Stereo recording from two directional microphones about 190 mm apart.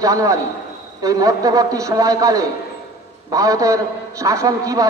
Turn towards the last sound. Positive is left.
turn(degrees=-15)  # may be behind; listen again after turning